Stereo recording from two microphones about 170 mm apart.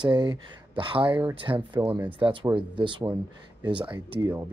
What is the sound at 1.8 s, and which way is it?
Speech, 10° right (ahead or behind).